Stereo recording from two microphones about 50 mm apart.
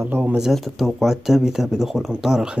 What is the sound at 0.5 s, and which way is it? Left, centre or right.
Speech, centre.